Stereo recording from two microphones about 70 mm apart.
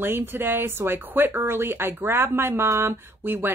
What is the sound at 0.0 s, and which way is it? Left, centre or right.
Speech, right.